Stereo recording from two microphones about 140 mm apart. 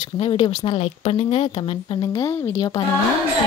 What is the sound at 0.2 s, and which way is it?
Speech, 40° left (ahead or behind).